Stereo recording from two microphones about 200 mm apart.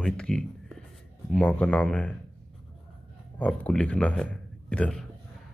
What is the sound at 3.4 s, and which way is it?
A man's voice, 5° left (ahead or behind).